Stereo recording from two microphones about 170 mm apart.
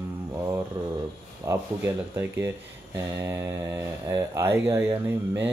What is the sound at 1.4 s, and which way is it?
Speech, 15° right (ahead or behind).